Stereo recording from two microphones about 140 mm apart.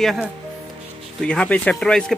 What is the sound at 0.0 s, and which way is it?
Speech, centre (ahead or behind).